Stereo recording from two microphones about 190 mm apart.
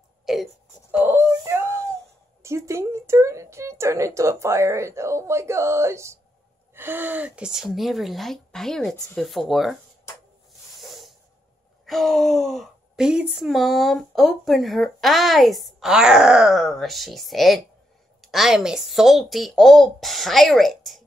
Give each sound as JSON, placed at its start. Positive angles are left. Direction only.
{"t": 0.2, "sound": "wail", "side_deg": 0}
{"t": 0.9, "sound": "a sound", "side_deg": -10}
{"t": 2.4, "sound": "speech", "side_deg": -15}
{"t": 10.8, "sound": "hiss", "side_deg": 0}
{"t": 11.8, "sound": "speech", "side_deg": 0}